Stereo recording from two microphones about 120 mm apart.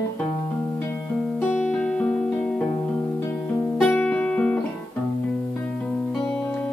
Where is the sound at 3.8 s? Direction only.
10° left (ahead or behind).